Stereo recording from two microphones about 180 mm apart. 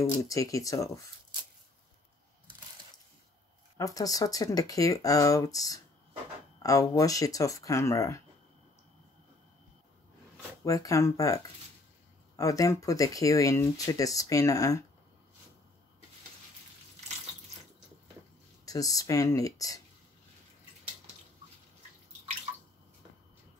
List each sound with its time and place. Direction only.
0.3 s speech: 20° left (ahead or behind)
3.7 s speech: 20° left (ahead or behind)
10.6 s speech: 20° left (ahead or behind)
18.7 s speech: 20° left (ahead or behind)